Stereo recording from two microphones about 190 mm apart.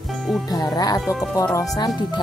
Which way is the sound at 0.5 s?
20° left (ahead or behind).